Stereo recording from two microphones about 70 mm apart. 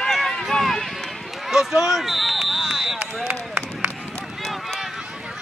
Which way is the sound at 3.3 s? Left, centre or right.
Right.